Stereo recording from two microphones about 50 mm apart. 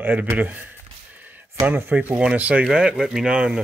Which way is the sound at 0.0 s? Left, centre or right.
Right.